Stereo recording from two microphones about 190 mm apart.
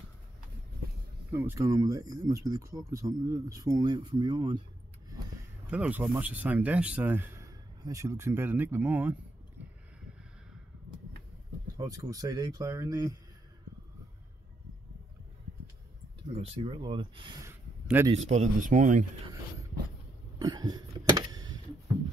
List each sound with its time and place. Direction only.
1.3 s speech: 15° right (ahead or behind)
5.7 s speech: 5° right (ahead or behind)
11.7 s speech: 20° right (ahead or behind)
16.3 s speech: 30° right (ahead or behind); by 18.0 s 10° right (ahead or behind)
18.1 s speech: 40° right (ahead or behind)
20.3 s cough: 20° right (ahead or behind)
21.1 s a sound: 20° right (ahead or behind)